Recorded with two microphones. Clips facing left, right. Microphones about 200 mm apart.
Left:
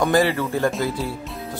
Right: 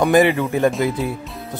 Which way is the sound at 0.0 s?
20° right (ahead or behind).